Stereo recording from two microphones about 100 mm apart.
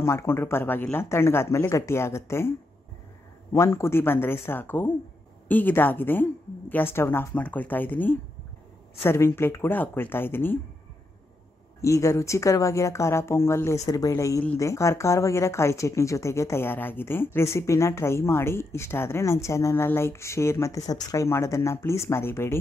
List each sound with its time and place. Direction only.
0.0 s speech: 25° left (ahead or behind)
3.5 s speech: 30° left (ahead or behind)
11.8 s speech: 30° left (ahead or behind)